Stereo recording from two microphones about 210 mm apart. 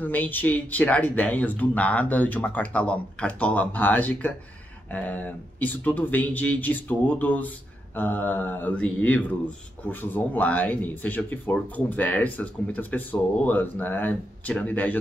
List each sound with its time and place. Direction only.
0.0 s speech: 10° left (ahead or behind)